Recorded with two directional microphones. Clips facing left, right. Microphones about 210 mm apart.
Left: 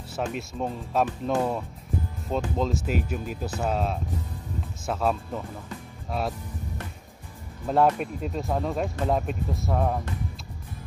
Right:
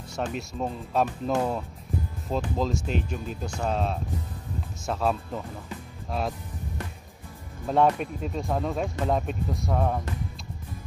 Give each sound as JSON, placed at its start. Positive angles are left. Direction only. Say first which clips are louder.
{"t": 0.1, "sound": "speech", "louder": "left 1 dB", "side_deg": 5}
{"t": 7.6, "sound": "speech", "louder": "even", "side_deg": 5}